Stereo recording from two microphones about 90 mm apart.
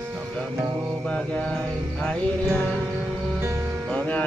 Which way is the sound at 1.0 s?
10° left (ahead or behind).